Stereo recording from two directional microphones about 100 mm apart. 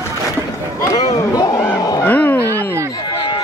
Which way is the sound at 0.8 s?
30° left (ahead or behind).